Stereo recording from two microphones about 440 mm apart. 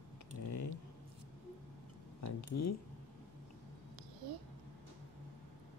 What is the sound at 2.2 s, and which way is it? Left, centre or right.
Speech, left.